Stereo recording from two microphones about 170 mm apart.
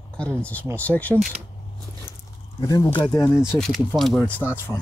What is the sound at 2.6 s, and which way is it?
Speech, 20° left (ahead or behind).